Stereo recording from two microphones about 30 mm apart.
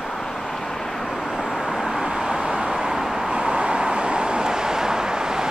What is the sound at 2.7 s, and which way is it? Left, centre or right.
Vehicle, centre.